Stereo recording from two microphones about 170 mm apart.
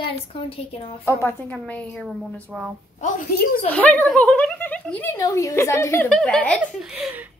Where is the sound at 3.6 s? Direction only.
10° left (ahead or behind).